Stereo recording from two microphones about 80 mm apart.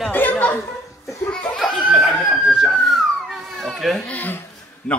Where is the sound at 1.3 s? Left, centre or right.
Centre.